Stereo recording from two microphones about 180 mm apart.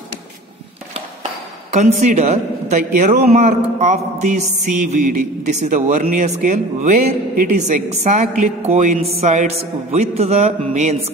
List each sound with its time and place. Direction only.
1.7 s speech: 40° right (ahead or behind)